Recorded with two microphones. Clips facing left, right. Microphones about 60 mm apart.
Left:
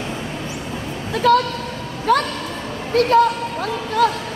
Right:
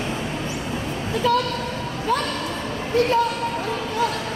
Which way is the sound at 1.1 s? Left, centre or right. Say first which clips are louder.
Left 5 dB; left.